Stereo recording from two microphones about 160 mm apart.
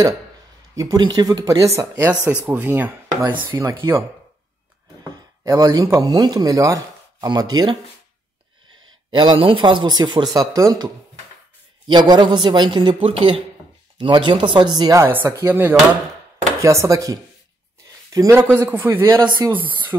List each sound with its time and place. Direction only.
0.7 s speech: 25° right (ahead or behind)
5.4 s speech: 25° right (ahead or behind)
9.1 s speech: 30° right (ahead or behind)
11.9 s speech: 25° right (ahead or behind)
19.2 s speech: 25° right (ahead or behind)
19.5 s speech: 10° right (ahead or behind)